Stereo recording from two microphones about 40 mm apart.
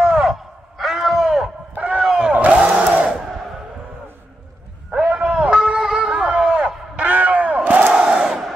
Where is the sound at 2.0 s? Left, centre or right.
Right.